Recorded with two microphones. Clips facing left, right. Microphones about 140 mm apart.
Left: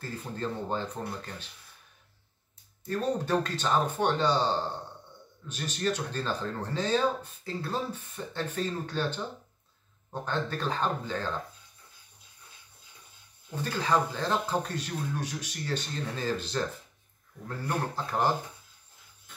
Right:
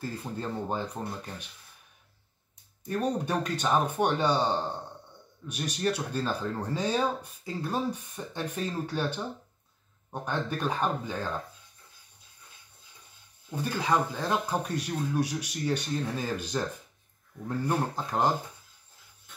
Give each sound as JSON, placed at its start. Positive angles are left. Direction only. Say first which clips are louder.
{"t": 0.2, "sound": "speech", "louder": "even", "side_deg": -10}
{"t": 2.9, "sound": "speech", "louder": "left 1 dB", "side_deg": -15}
{"t": 10.2, "sound": "speech", "louder": "right 1 dB", "side_deg": -10}
{"t": 13.6, "sound": "speech", "louder": "even", "side_deg": -10}